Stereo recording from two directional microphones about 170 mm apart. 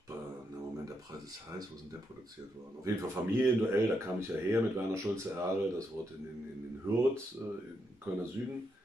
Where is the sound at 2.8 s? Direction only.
15° right (ahead or behind).